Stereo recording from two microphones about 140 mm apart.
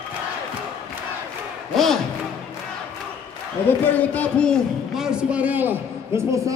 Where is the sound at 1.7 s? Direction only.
Centre (ahead or behind).